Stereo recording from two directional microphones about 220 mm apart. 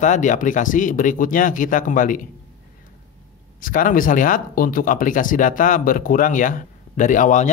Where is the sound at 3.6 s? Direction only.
40° left (ahead or behind).